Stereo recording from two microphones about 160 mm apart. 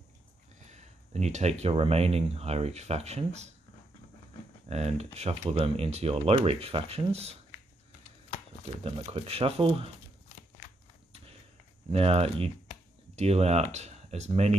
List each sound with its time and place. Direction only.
0.6 s speech: 45° right (ahead or behind)
4.6 s speech: 40° right (ahead or behind)
8.8 s speech: 40° right (ahead or behind)
11.9 s speech: 40° right (ahead or behind)